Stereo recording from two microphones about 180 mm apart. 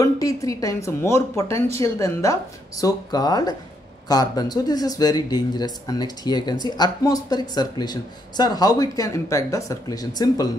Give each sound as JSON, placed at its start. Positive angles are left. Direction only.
{"t": 0.0, "sound": "a woman's voice", "side_deg": 20}